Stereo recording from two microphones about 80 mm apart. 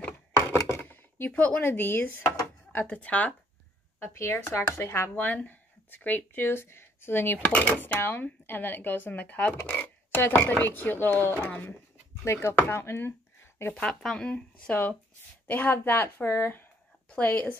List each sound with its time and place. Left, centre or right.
0.6 s chopping: left
0.8 s chopping: left
2.7 s speech: centre
4.0 s speech: left
5.1 s speech: left
7.5 s speech: centre
8.0 s speech: left
13.7 s speech: centre